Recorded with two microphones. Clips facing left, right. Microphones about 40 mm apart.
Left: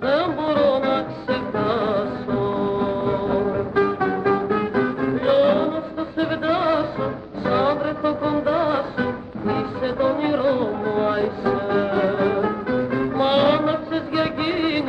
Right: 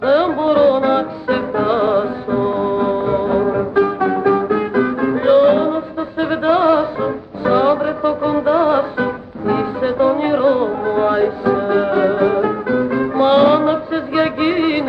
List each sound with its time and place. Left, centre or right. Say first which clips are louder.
0.0 s music: right 6 dB; centre
5.3 s music: right 6 dB; centre
13.7 s music: right 5 dB; centre